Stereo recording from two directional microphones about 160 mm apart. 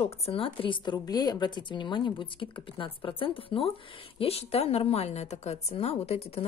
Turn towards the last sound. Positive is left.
turn(degrees=40)  # may be behind; listen again after turning